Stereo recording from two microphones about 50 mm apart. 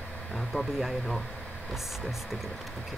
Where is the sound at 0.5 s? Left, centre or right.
Left.